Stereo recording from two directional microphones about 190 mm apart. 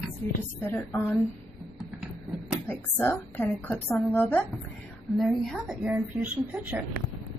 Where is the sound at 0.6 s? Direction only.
10° left (ahead or behind).